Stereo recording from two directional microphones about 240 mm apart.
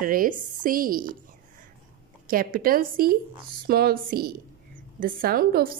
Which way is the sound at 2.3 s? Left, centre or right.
Right.